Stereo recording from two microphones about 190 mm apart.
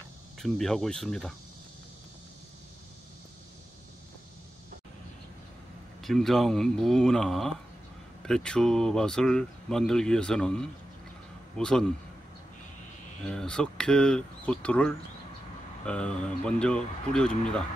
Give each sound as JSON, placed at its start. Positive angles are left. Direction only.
{"t": 0.4, "sound": "speech", "side_deg": 0}
{"t": 6.0, "sound": "a man's voice", "side_deg": 0}
{"t": 13.2, "sound": "speech", "side_deg": 5}